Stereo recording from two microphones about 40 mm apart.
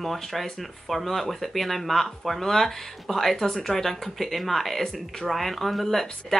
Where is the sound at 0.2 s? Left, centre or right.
Centre.